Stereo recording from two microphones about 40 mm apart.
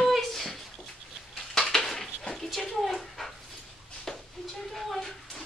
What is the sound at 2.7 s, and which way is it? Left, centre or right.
Dog, centre.